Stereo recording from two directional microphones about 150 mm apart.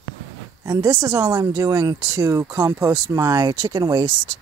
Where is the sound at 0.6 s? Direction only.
20° right (ahead or behind).